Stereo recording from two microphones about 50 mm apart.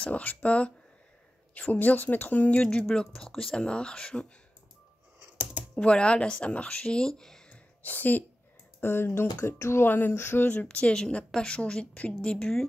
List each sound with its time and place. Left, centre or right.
0.0 s a woman's voice: left
5.4 s computer keyboard: right
5.8 s a woman's voice: left
7.8 s a woman's voice: left
8.8 s speech: left
9.8 s speech: left
10.5 s a woman's voice: left